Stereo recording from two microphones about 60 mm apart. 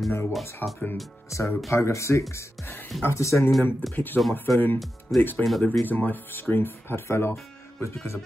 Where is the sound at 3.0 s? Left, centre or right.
Left.